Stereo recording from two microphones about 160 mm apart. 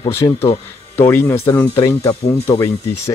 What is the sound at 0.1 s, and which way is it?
Speech, 15° left (ahead or behind).